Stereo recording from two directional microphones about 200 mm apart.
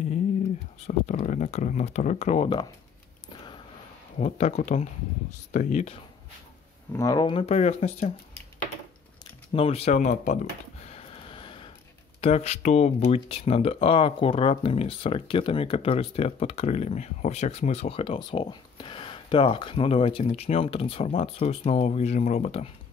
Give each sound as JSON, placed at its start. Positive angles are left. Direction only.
{"t": 0.8, "sound": "speech", "side_deg": 35}
{"t": 4.2, "sound": "speech", "side_deg": 35}
{"t": 6.9, "sound": "speech", "side_deg": 15}
{"t": 9.5, "sound": "a sound", "side_deg": 30}
{"t": 12.2, "sound": "speech", "side_deg": 30}